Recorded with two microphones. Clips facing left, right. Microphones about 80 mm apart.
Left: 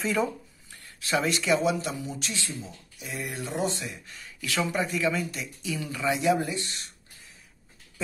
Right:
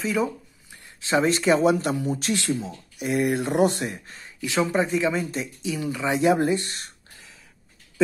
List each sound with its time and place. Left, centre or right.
0.0 s speech: centre
1.0 s speech: right
2.4 s speech: right
4.4 s speech: right
6.5 s speech: right